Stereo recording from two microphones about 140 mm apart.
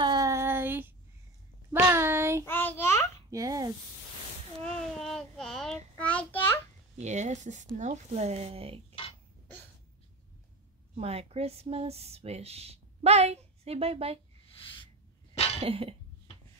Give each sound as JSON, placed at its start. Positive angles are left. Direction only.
{"t": 0.0, "sound": "a sound", "side_deg": -25}
{"t": 2.4, "sound": "child singing", "side_deg": 15}
{"t": 3.3, "sound": "speech", "side_deg": -25}
{"t": 4.6, "sound": "child singing", "side_deg": 5}
{"t": 5.9, "sound": "a sound", "side_deg": 10}
{"t": 7.0, "sound": "speech", "side_deg": -55}
{"t": 11.0, "sound": "speech", "side_deg": -45}
{"t": 15.3, "sound": "a sound", "side_deg": 45}
{"t": 15.6, "sound": "speech", "side_deg": -45}